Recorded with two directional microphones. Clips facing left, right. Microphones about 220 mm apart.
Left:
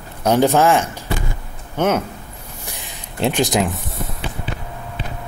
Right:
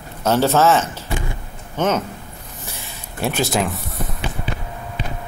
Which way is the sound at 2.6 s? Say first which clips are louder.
Even; 15° left (ahead or behind).